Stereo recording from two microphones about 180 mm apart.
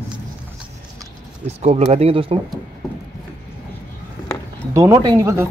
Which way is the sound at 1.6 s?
35° right (ahead or behind).